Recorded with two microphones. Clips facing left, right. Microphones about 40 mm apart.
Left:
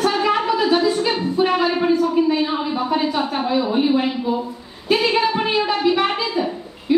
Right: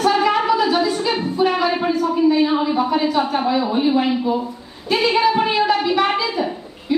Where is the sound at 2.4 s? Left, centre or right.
Centre.